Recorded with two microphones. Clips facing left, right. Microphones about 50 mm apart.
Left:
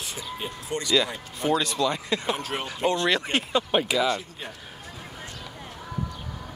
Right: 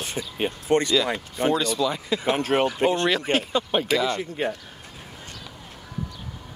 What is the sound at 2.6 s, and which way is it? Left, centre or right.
Speech, right.